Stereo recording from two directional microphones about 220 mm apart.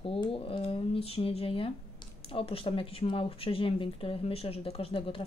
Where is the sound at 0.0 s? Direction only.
25° left (ahead or behind).